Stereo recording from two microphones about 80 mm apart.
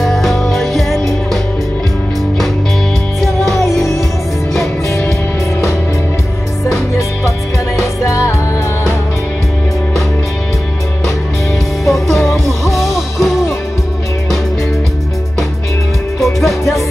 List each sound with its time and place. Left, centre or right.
0.0 s music: centre
3.6 s music: right
8.0 s music: left
11.8 s music: centre
16.2 s music: centre